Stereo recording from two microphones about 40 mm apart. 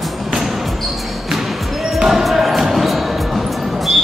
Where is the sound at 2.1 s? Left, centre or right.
Centre.